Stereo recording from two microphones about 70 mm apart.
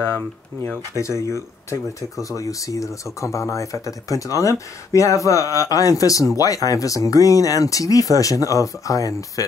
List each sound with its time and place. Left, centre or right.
0.9 s speech: left